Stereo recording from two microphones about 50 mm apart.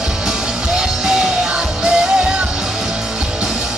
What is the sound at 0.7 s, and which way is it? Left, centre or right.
Music, centre.